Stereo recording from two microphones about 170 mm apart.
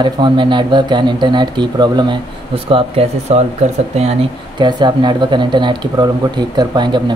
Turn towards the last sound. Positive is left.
turn(degrees=-25)  # may be behind; listen again after turning